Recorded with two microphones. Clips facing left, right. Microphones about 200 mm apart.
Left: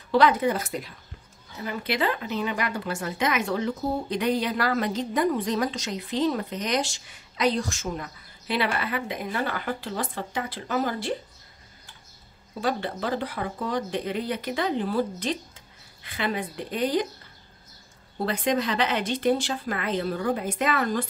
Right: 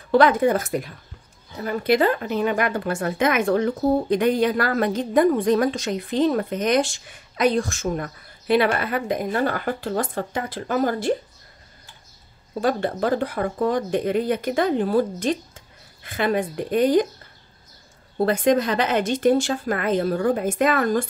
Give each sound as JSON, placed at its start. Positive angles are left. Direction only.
{"t": 0.1, "sound": "a woman's voice", "side_deg": -50}
{"t": 12.5, "sound": "a woman's voice", "side_deg": -45}
{"t": 18.2, "sound": "a woman's voice", "side_deg": -45}